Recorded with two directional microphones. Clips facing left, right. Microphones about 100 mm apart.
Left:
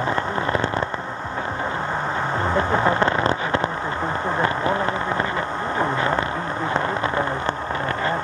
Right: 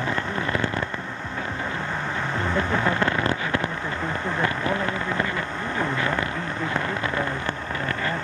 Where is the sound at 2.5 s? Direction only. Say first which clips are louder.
Left 4 dB; 30° left (ahead or behind).